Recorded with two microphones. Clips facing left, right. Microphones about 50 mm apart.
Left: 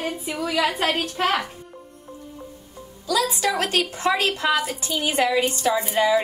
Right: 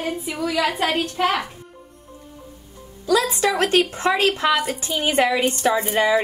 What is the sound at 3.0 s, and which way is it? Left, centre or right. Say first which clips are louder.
A woman's voice: right 3 dB; right.